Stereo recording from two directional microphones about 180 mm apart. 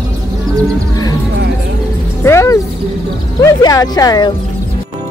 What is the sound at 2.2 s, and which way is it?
Music, 15° left (ahead or behind).